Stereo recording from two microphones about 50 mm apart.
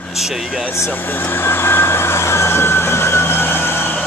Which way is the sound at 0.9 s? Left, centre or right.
Left.